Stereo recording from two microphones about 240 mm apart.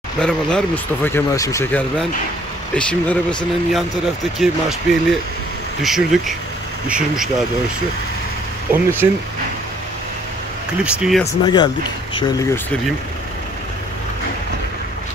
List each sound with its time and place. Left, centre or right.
0.2 s speech: centre
8.7 s speech: centre
10.8 s speech: centre
11.4 s speech: centre